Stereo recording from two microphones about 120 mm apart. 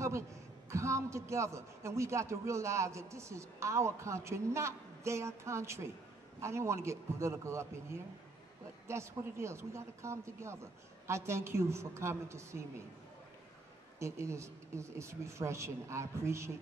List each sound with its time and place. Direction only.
0.7 s a man's voice: 25° right (ahead or behind)
8.8 s a man's voice: 25° right (ahead or behind)
13.9 s a man's voice: 25° right (ahead or behind)